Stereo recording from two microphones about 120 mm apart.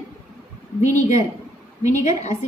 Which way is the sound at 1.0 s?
85° left.